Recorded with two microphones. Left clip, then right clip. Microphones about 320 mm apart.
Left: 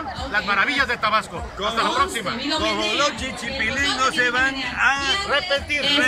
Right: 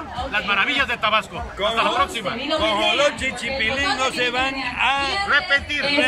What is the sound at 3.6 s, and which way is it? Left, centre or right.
Speech, centre.